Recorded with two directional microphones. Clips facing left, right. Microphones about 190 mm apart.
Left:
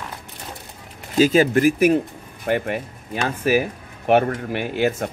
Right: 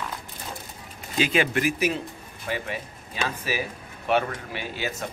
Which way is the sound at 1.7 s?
55° left (ahead or behind).